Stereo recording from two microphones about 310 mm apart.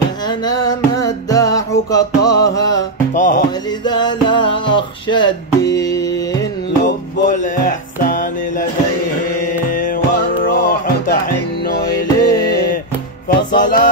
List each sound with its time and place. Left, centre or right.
0.3 s music: centre
3.2 s music: left
3.8 s music: centre
6.8 s music: left
9.7 s music: left
13.5 s music: left